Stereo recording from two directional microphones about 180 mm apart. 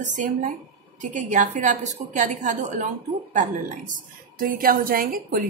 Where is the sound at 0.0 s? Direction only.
45° right (ahead or behind).